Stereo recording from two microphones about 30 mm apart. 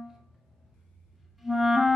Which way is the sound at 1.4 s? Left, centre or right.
Centre.